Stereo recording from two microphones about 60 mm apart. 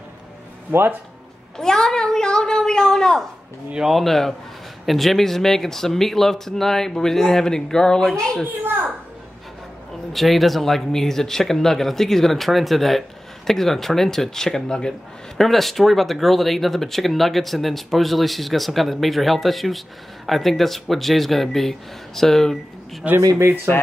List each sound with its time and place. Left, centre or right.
0.7 s speech: right
1.6 s speech: centre
10.1 s speech: centre
23.0 s speech: right
23.4 s speech: right